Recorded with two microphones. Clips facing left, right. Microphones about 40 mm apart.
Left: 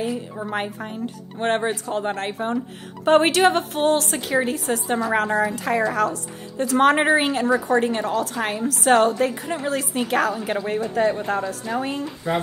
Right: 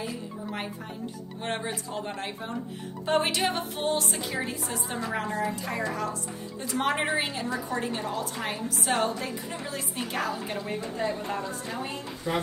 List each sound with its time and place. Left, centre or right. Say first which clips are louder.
0.4 s a woman's voice: left 8 dB; left
3.1 s a woman's voice: left 10 dB; left
4.4 s a woman's voice: left 9 dB; left
7.0 s a woman's voice: left 9 dB; left
8.5 s a woman's voice: left 11 dB; left
10.5 s a woman's voice: left 9 dB; left